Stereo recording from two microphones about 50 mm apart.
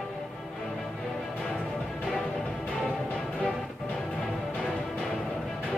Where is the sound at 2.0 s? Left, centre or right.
Centre.